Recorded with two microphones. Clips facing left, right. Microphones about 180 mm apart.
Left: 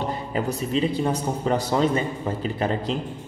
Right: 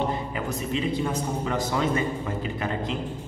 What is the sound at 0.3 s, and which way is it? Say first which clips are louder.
A man's voice: left 4 dB; 35° left (ahead or behind).